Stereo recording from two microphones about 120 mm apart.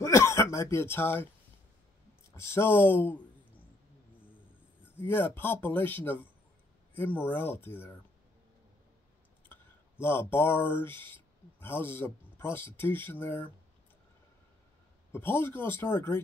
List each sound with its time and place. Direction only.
0.0 s throat clearing: 25° left (ahead or behind)
2.5 s speech: 20° left (ahead or behind)
4.9 s speech: 20° left (ahead or behind)
10.0 s speech: 20° left (ahead or behind)
15.1 s speech: 15° left (ahead or behind)